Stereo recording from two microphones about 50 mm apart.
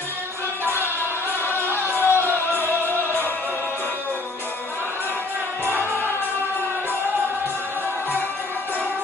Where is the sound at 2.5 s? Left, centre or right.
Left.